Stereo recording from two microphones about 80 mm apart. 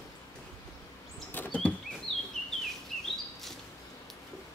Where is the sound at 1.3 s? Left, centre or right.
Left.